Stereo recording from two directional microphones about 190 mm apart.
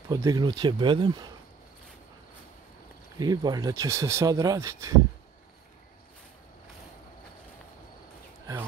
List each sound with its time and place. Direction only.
0.1 s speech: 20° right (ahead or behind)
3.2 s speech: 20° right (ahead or behind)